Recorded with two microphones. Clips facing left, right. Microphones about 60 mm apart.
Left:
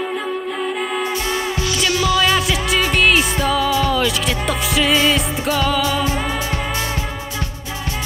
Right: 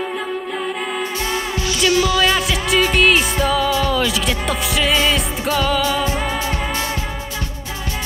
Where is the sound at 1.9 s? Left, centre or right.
Centre.